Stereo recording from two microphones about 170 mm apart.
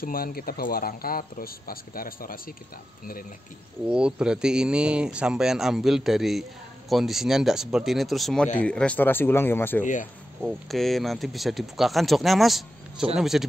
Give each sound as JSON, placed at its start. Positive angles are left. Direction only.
{"t": 0.0, "sound": "speech", "side_deg": 60}
{"t": 3.8, "sound": "a man's voice", "side_deg": -5}
{"t": 10.4, "sound": "speech", "side_deg": 0}